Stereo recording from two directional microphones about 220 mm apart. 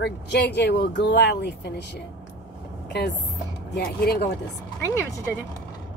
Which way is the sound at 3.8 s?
45° left (ahead or behind).